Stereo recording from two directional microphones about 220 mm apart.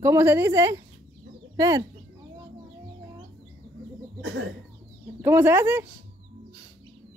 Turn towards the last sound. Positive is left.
turn(degrees=-10)  # may be behind; listen again after turning